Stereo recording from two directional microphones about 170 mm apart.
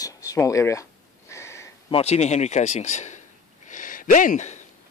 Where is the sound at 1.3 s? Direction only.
15° left (ahead or behind).